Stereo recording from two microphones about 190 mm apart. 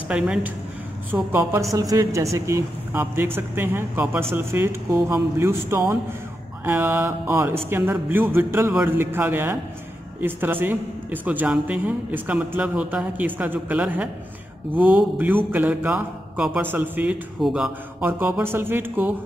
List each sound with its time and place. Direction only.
0.1 s a woman's voice: 5° right (ahead or behind)